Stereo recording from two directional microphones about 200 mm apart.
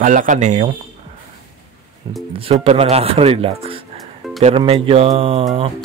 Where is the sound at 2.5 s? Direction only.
30° right (ahead or behind).